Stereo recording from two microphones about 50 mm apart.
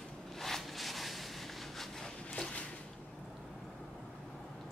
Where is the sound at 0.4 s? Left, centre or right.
Centre.